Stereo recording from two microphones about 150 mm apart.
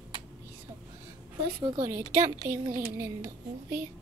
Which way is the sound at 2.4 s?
20° right (ahead or behind).